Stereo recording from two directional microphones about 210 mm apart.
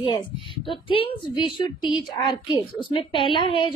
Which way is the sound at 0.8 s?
25° left (ahead or behind).